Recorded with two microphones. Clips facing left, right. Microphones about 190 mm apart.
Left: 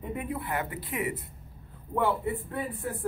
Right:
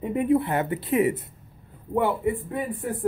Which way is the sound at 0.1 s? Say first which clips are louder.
Right 11 dB; 25° right (ahead or behind).